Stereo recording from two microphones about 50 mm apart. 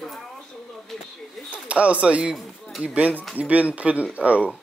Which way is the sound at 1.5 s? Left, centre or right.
Right.